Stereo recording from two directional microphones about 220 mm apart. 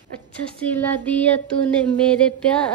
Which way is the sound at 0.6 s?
5° left (ahead or behind).